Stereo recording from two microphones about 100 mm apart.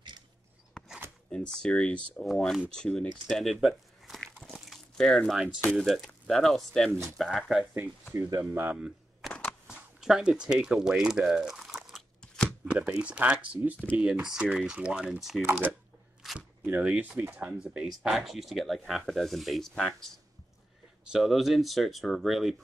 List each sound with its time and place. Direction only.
0.8 s a sound: 5° left (ahead or behind)
1.3 s speech: 10° left (ahead or behind)
3.6 s crumpling: centre (ahead or behind)
5.8 s speech: centre (ahead or behind)
8.1 s speech: 30° right (ahead or behind)
8.5 s speech: 20° right (ahead or behind)
8.7 s a sound: 10° right (ahead or behind)
9.3 s a sound: 15° left (ahead or behind)
9.7 s speech: 5° right (ahead or behind)
12.2 s chopping: 5° left (ahead or behind)
12.6 s speech: 15° right (ahead or behind)
16.3 s speech: 15° right (ahead or behind); by 20.0 s 5° left (ahead or behind)
21.1 s speech: centre (ahead or behind)